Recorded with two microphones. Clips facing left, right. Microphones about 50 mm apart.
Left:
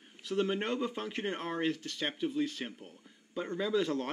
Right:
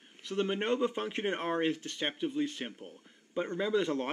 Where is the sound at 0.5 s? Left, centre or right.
Centre.